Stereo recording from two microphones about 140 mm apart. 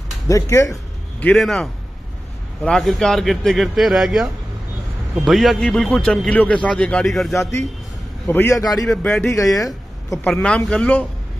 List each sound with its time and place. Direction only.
0.3 s a man's voice: 20° left (ahead or behind)
1.2 s a man's voice: centre (ahead or behind)
8.3 s a man's voice: 15° left (ahead or behind)
8.8 s a man's voice: 5° left (ahead or behind)